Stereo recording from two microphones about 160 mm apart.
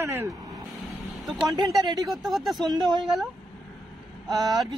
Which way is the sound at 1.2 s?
Centre (ahead or behind).